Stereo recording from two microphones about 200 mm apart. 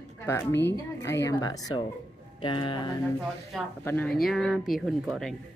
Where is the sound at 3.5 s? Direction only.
10° left (ahead or behind).